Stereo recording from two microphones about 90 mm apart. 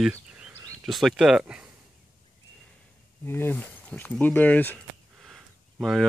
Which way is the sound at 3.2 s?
25° left (ahead or behind).